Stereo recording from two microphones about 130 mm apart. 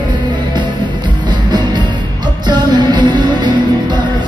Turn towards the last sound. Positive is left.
turn(degrees=-35)  # may be behind; listen again after turning